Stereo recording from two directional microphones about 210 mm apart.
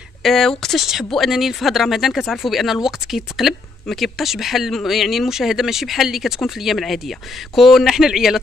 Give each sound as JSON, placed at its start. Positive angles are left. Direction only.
{"t": 0.2, "sound": "speech", "side_deg": 0}